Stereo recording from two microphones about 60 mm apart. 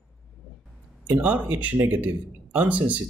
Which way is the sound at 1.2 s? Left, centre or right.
Right.